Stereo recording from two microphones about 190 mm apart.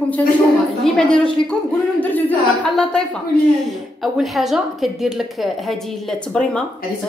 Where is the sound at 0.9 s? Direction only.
5° left (ahead or behind).